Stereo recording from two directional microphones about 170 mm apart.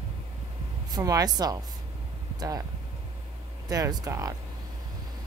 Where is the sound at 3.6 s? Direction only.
20° right (ahead or behind).